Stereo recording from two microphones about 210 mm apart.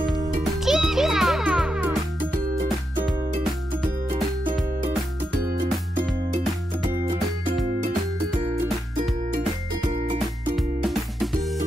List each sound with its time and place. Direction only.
0.4 s music: centre (ahead or behind)
9.9 s music: 20° right (ahead or behind)
10.5 s music: centre (ahead or behind)